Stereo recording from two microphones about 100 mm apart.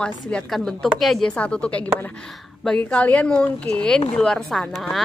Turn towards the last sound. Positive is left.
turn(degrees=5)  # may be behind; listen again after turning